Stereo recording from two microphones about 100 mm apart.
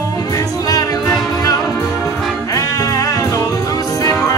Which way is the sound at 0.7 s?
40° left (ahead or behind).